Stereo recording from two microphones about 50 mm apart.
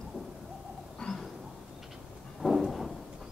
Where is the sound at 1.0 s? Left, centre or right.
Centre.